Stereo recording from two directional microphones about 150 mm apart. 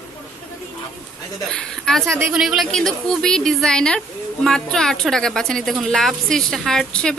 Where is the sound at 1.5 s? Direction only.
5° left (ahead or behind).